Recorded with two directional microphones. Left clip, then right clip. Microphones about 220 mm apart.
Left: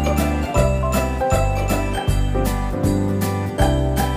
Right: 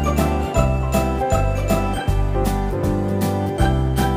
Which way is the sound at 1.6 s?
Centre (ahead or behind).